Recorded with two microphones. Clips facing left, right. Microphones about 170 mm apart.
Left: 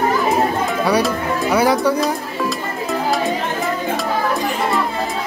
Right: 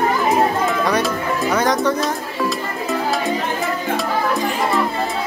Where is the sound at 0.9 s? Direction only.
5° left (ahead or behind).